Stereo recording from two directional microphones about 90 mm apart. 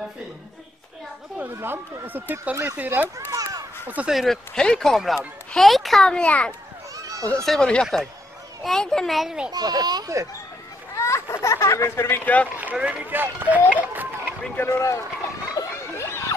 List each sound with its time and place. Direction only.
1.4 s speech: 25° right (ahead or behind)
3.3 s a sound: 45° right (ahead or behind)
3.8 s speech: 15° right (ahead or behind)
4.1 s a child's voice: centre (ahead or behind)
7.0 s children playing: 40° right (ahead or behind)
7.4 s speech: 5° left (ahead or behind)
9.5 s speech: 45° right (ahead or behind)
11.0 s a sound: 30° left (ahead or behind)
12.7 s speech: 15° right (ahead or behind)
14.6 s speech: 30° left (ahead or behind)
15.5 s a sound: 35° left (ahead or behind)